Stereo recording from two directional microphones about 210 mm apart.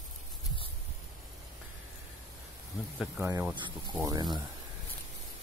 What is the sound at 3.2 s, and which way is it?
Speech, 10° right (ahead or behind).